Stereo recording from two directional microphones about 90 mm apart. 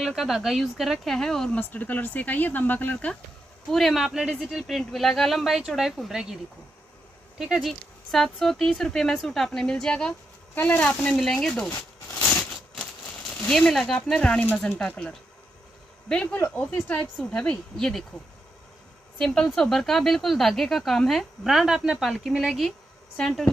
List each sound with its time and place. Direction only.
0.0 s speech: 5° right (ahead or behind)
1.6 s speech: 20° left (ahead or behind)
3.7 s a woman's voice: centre (ahead or behind)
10.5 s speech: 20° left (ahead or behind)
12.2 s a sound: 15° left (ahead or behind)
13.5 s speech: 5° left (ahead or behind)
14.5 s a woman's voice: 20° left (ahead or behind)
19.1 s speech: 10° left (ahead or behind)